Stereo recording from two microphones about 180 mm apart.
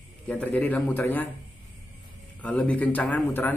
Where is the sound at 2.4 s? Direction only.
5° left (ahead or behind).